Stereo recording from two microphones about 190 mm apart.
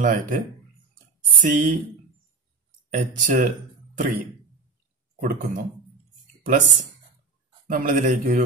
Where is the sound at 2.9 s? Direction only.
40° right (ahead or behind).